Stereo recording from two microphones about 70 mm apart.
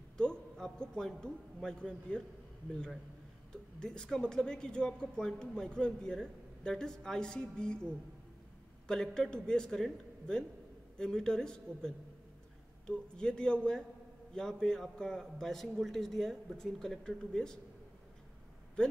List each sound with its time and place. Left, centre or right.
0.2 s a man's voice: centre
3.8 s a man's voice: centre
18.8 s speech: centre